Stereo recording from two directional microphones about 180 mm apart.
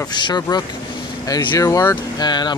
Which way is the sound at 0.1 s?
25° left (ahead or behind).